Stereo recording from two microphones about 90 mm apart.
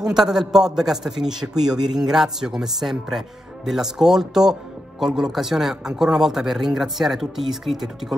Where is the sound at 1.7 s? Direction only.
50° right (ahead or behind).